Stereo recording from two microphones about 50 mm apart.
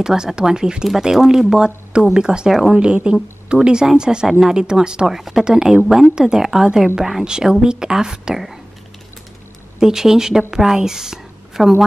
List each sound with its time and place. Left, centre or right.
0.0 s speech: centre
2.8 s speech: centre
9.8 s a woman's voice: centre